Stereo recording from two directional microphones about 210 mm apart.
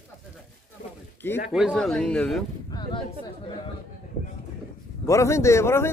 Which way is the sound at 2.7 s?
20° left (ahead or behind).